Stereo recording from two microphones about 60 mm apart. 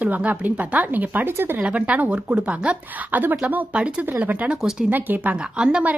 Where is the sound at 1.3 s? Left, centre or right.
Right.